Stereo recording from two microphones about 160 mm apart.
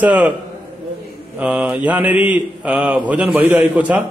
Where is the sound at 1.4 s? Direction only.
10° right (ahead or behind).